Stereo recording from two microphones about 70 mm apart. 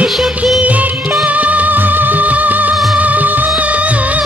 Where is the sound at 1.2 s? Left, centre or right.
Right.